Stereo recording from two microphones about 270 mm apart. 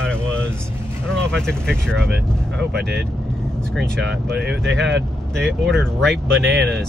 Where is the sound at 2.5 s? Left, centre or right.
Right.